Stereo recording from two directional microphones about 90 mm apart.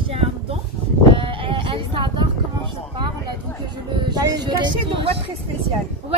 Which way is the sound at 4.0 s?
55° right (ahead or behind).